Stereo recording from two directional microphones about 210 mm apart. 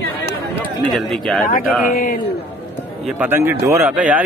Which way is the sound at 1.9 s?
45° left (ahead or behind).